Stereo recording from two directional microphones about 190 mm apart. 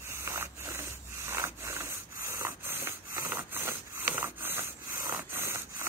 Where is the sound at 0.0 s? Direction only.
15° right (ahead or behind).